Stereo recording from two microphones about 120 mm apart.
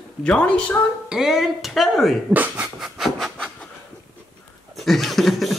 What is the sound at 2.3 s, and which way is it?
Speech, 15° right (ahead or behind).